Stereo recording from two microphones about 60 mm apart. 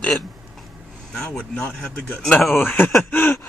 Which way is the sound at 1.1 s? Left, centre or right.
Centre.